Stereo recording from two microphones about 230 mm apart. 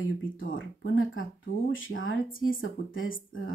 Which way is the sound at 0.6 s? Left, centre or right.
Left.